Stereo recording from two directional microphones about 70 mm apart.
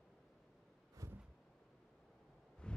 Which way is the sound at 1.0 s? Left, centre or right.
Right.